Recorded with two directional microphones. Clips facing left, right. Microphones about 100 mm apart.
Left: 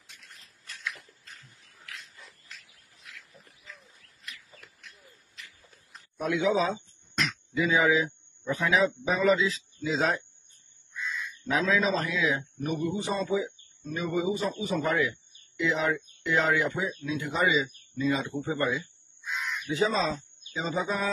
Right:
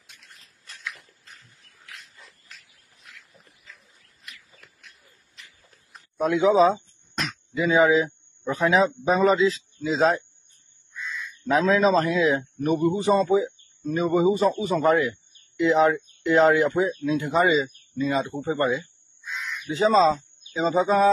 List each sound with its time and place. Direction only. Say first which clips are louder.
3.3 s dog: left 1 dB; centre (ahead or behind)
6.1 s a sound: right 7 dB; 35° right (ahead or behind)
8.5 s speech: right 5 dB; 35° right (ahead or behind)
10.9 s a sound: even; centre (ahead or behind)
11.4 s speech: right 7 dB; 45° right (ahead or behind)
12.8 s a man's voice: right 10 dB; 55° right (ahead or behind)
13.3 s speech: right 7 dB; 40° right (ahead or behind)
19.7 s speech: right 9 dB; 35° right (ahead or behind)